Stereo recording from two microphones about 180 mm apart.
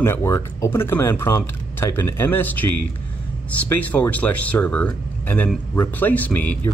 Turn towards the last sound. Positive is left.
turn(degrees=10)  # may be behind; listen again after turning